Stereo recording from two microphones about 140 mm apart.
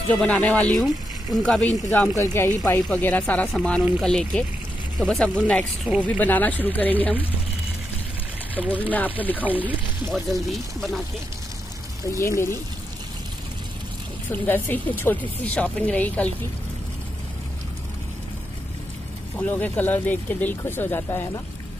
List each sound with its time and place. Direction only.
0.1 s speech: 5° left (ahead or behind)
2.3 s speech: 20° left (ahead or behind)
8.5 s speech: 10° left (ahead or behind)
9.4 s speech: 10° right (ahead or behind)
10.1 s speech: centre (ahead or behind)
12.1 s speech: 20° left (ahead or behind)
14.3 s speech: 15° left (ahead or behind)
19.3 s speech: 10° left (ahead or behind)